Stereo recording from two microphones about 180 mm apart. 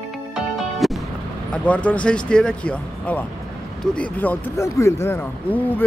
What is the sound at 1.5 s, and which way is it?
Speech, 5° left (ahead or behind).